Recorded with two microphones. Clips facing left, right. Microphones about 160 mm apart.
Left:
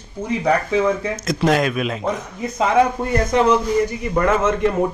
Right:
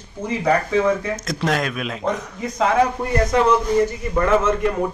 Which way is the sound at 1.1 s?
Centre (ahead or behind).